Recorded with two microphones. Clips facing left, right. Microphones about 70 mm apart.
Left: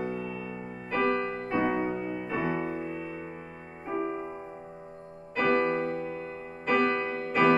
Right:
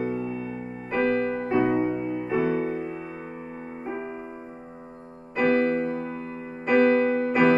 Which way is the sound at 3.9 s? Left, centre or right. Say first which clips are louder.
Left 3 dB; centre.